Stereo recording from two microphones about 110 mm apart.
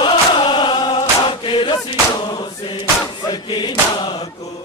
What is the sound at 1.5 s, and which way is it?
Chant, 50° left (ahead or behind).